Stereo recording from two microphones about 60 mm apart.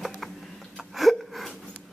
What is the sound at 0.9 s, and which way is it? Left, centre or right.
Gasp, centre.